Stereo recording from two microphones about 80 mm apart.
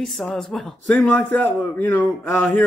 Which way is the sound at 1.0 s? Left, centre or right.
Left.